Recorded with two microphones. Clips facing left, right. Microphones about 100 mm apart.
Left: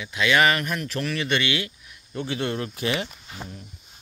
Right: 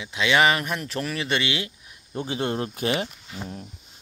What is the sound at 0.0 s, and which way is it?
Speech, 20° right (ahead or behind).